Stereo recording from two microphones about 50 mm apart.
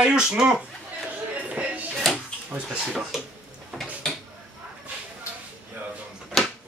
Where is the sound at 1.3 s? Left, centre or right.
Right.